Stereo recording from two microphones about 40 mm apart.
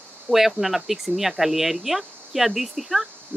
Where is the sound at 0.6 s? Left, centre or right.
Centre.